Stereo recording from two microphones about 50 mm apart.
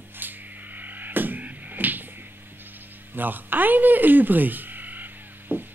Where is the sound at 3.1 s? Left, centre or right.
Right.